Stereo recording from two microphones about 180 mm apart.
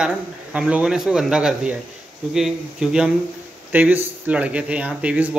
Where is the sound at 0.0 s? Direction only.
5° right (ahead or behind).